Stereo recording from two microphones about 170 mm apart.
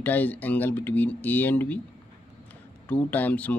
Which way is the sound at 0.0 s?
10° left (ahead or behind).